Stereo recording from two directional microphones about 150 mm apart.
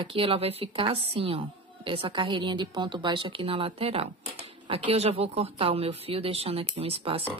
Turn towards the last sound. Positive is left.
turn(degrees=-40)  # may be behind; listen again after turning